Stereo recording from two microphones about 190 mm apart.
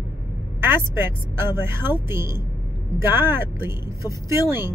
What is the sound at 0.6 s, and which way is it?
Speech, 10° right (ahead or behind).